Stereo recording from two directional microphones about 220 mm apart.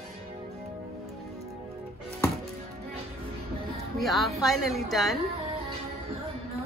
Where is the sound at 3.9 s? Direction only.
Centre (ahead or behind).